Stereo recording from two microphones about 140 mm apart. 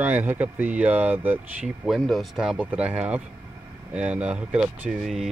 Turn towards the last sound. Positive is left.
turn(degrees=-5)  # may be behind; listen again after turning